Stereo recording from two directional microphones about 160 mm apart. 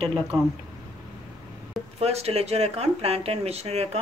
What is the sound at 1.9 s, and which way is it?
Speech, 40° right (ahead or behind).